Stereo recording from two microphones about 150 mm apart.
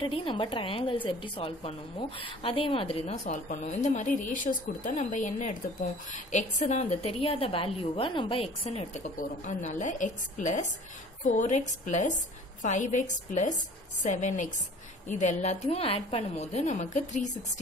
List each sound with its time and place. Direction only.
0.0 s a woman's voice: 35° left (ahead or behind); by 17.3 s 55° left (ahead or behind)